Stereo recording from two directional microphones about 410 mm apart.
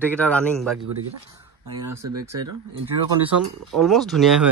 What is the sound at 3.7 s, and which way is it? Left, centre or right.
Speech, centre.